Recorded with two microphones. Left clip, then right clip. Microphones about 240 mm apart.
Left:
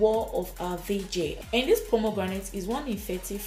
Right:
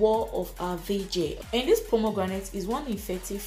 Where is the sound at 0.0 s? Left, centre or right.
Centre.